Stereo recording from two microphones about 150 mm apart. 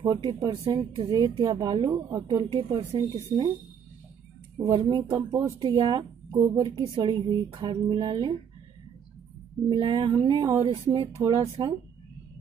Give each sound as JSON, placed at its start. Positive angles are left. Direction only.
{"t": 0.1, "sound": "speech", "side_deg": -30}
{"t": 4.6, "sound": "speech", "side_deg": -30}
{"t": 9.7, "sound": "speech", "side_deg": -30}